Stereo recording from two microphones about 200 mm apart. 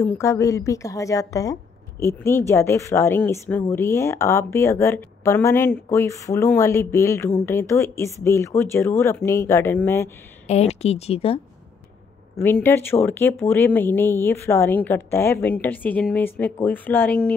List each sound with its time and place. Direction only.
0.0 s a woman's voice: 15° left (ahead or behind)
10.4 s a woman's voice: 30° left (ahead or behind)
12.6 s a woman's voice: 10° left (ahead or behind)